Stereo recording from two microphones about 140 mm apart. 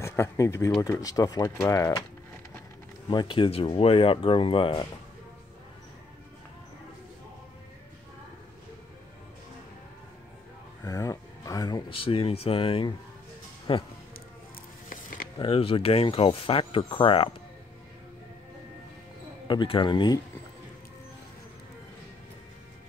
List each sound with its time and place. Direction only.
0.0 s speech: 20° left (ahead or behind)
3.1 s speech: 35° left (ahead or behind)
10.8 s speech: 25° left (ahead or behind)
12.0 s speech: 40° left (ahead or behind)
14.9 s a sound: 80° left
15.3 s speech: 40° left (ahead or behind)
19.4 s speech: 35° left (ahead or behind)